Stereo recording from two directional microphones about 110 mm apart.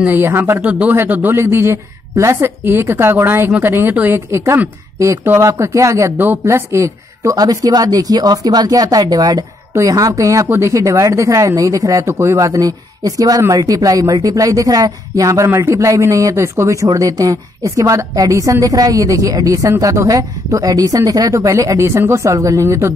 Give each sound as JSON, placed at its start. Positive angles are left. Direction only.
{"t": 0.0, "sound": "speech", "side_deg": -20}